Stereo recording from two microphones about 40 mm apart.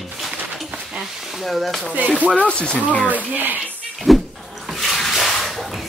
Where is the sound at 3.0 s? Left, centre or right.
Right.